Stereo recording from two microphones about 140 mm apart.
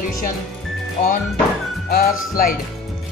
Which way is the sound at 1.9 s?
90° left.